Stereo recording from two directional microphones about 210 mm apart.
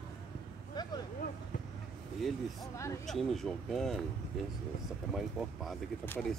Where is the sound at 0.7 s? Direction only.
20° left (ahead or behind).